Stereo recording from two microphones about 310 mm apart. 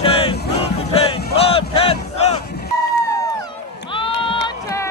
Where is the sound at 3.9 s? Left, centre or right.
Centre.